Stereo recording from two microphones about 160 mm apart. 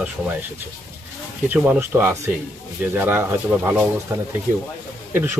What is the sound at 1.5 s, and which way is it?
Speech, 10° right (ahead or behind).